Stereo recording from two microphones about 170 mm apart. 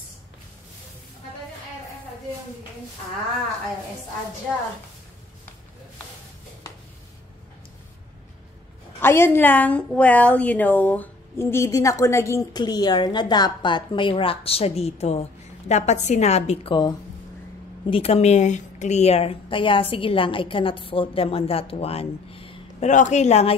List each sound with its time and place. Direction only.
9.0 s a woman's voice: 15° left (ahead or behind); by 16.7 s 40° left (ahead or behind)
17.8 s a woman's voice: 35° left (ahead or behind)
22.8 s speech: 45° left (ahead or behind)